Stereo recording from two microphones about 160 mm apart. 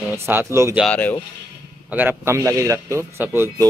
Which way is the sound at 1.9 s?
10° right (ahead or behind).